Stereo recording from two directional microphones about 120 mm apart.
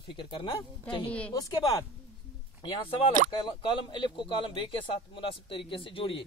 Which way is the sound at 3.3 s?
45° left (ahead or behind).